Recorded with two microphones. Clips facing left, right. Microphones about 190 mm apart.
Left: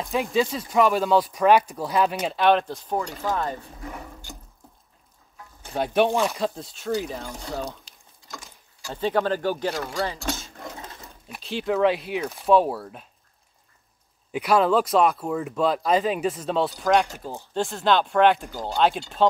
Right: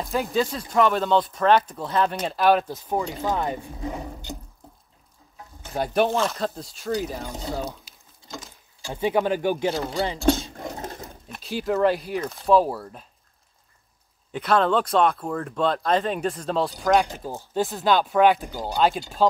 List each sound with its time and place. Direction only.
0.0 s speech: centre (ahead or behind)
3.2 s speech: 20° right (ahead or behind)
5.8 s speech: centre (ahead or behind)
6.1 s speech: 15° left (ahead or behind)
6.4 s speech: centre (ahead or behind)
7.2 s speech: 20° right (ahead or behind)
7.5 s speech: 5° right (ahead or behind)
8.9 s speech: 15° right (ahead or behind)
10.7 s sewing machine: 40° right (ahead or behind)
11.2 s a sound: 5° left (ahead or behind)
11.5 s speech: centre (ahead or behind)
14.3 s speech: 10° left (ahead or behind)
18.5 s speech: 15° right (ahead or behind)
18.8 s speech: centre (ahead or behind)